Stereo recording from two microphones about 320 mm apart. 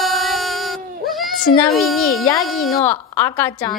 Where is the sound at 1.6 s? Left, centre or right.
Centre.